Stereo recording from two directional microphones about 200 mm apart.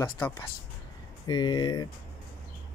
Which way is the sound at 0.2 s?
15° left (ahead or behind).